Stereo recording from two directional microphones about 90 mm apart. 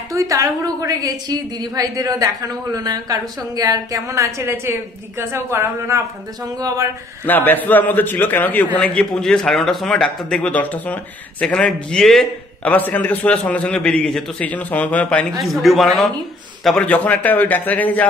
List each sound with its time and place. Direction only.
0.1 s a woman's voice: 35° right (ahead or behind)
7.2 s a man's voice: 20° left (ahead or behind); by 12.3 s 5° left (ahead or behind)
12.6 s a man's voice: 20° left (ahead or behind)
15.4 s a man's voice: centre (ahead or behind)
16.7 s a man's voice: 15° left (ahead or behind)